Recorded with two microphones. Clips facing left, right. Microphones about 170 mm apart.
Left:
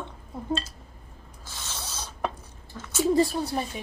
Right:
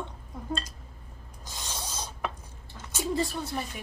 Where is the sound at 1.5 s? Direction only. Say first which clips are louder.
Right 1 dB; 15° right (ahead or behind).